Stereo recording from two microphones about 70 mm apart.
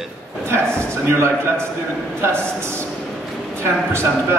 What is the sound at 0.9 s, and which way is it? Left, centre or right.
Speech, right.